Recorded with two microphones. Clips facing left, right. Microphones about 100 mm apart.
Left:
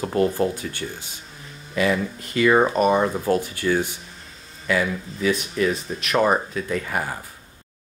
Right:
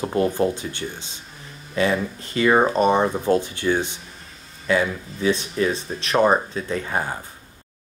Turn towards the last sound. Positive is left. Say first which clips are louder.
# right 1 dB
turn(degrees=-30)  # may be behind; listen again after turning